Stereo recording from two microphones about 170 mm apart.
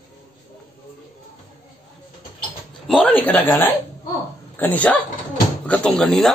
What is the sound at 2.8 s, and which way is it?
Speech, 5° left (ahead or behind).